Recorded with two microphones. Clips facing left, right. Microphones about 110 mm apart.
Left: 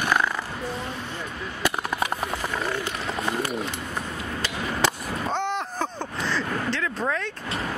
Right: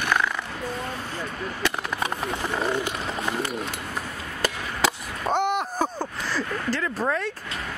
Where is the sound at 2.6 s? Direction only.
20° right (ahead or behind).